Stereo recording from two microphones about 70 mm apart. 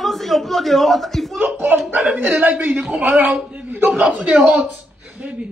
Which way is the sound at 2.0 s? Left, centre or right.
Centre.